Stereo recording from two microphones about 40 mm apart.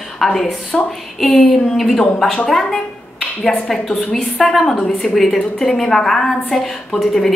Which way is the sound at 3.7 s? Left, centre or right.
Centre.